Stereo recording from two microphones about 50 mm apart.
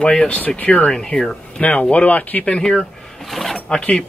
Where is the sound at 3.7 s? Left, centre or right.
Left.